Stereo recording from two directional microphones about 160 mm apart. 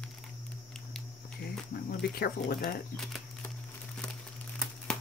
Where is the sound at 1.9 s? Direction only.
75° left (ahead or behind).